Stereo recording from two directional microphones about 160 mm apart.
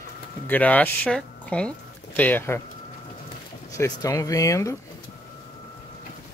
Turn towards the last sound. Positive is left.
turn(degrees=20)  # may be behind; listen again after turning